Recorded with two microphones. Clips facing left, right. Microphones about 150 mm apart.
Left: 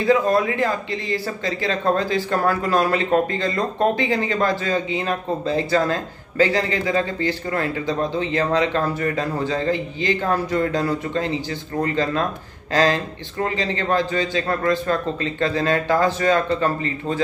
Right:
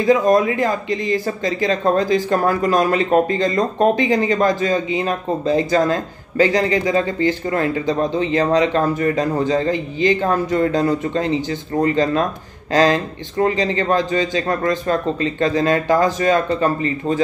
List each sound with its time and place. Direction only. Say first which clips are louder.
0.0 s speech: right 3 dB; 15° right (ahead or behind)